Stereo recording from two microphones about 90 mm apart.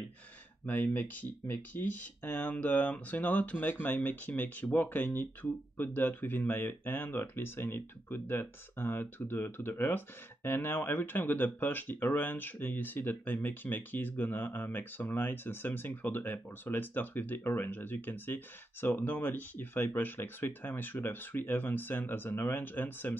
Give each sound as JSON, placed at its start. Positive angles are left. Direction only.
{"t": 0.7, "sound": "speech", "side_deg": 20}